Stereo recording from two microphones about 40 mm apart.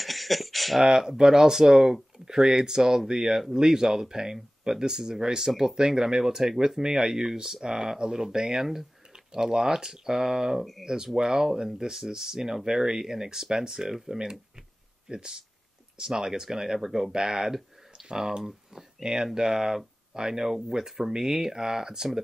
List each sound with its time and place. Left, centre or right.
0.0 s a sound: centre
0.8 s speech: centre
10.6 s speech: centre
11.1 s speech: centre
15.0 s speech: right